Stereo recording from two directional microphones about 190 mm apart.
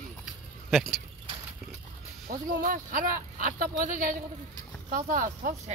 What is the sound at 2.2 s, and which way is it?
Speech, 45° right (ahead or behind).